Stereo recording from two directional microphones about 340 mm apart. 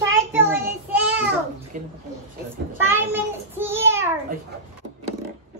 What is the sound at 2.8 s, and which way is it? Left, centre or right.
Child singing, centre.